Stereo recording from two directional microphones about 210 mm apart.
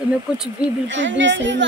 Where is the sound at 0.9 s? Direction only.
60° right (ahead or behind).